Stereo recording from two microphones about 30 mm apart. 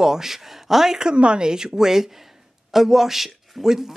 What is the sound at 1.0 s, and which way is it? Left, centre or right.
A woman's voice, right.